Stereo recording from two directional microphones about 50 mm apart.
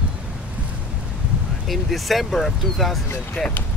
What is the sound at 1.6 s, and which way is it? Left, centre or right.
Speech, centre.